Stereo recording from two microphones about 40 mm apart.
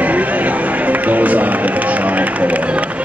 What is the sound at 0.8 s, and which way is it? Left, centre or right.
Music, right.